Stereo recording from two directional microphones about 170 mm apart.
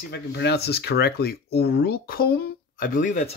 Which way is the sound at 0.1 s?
80° left.